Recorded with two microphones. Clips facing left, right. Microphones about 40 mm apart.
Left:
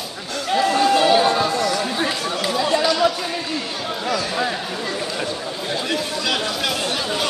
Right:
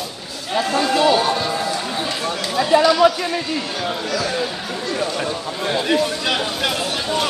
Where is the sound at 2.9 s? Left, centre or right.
Centre.